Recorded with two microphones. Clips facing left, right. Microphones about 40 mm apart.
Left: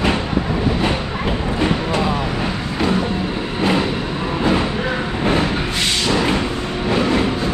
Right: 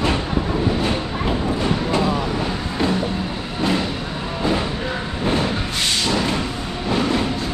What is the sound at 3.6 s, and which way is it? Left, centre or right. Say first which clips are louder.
Vehicle: left 3 dB; left.